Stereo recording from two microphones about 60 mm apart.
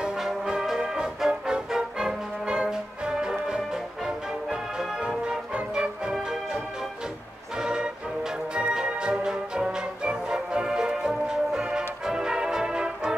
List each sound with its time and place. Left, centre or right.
0.0 s music: centre
6.1 s organ: centre
7.5 s music: centre